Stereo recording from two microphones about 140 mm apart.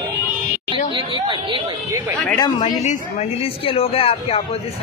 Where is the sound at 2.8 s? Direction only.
55° left (ahead or behind).